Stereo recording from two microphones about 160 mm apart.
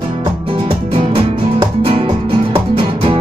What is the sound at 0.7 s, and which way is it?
Music, 35° right (ahead or behind).